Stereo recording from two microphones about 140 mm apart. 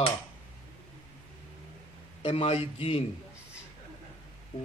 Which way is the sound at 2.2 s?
45° left (ahead or behind).